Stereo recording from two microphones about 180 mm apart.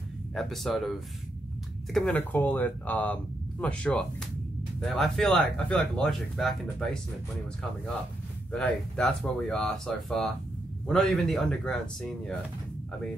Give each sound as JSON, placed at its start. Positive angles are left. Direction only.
{"t": 0.3, "sound": "speech", "side_deg": 0}
{"t": 2.0, "sound": "speech", "side_deg": 10}
{"t": 8.5, "sound": "speech", "side_deg": 5}